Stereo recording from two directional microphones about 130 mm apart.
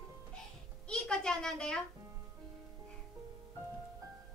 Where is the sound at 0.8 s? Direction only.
5° left (ahead or behind).